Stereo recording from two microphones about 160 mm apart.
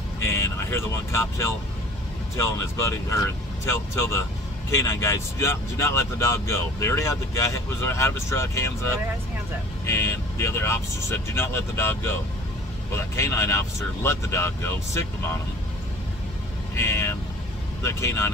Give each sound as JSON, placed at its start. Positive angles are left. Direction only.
{"t": 0.2, "sound": "speech", "side_deg": 20}
{"t": 16.7, "sound": "speech", "side_deg": 15}